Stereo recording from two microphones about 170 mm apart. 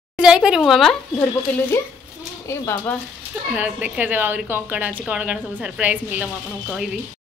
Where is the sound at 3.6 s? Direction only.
10° right (ahead or behind).